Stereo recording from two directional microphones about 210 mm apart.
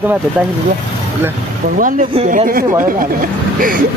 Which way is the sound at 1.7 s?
40° right (ahead or behind).